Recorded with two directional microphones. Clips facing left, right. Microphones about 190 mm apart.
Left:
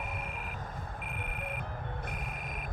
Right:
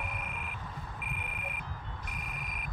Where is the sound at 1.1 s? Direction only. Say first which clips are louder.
Left 4 dB; 50° left (ahead or behind).